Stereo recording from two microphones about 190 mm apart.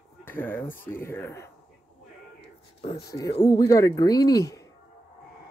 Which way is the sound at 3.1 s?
15° left (ahead or behind).